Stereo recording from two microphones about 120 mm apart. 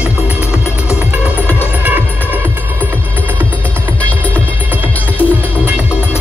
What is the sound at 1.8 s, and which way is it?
Music, 15° right (ahead or behind).